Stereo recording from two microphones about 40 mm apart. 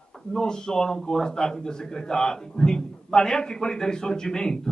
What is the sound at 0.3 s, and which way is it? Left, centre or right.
A man's voice, centre.